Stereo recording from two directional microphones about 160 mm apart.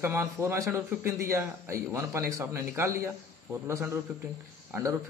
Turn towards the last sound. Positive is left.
turn(degrees=-20)  # may be behind; listen again after turning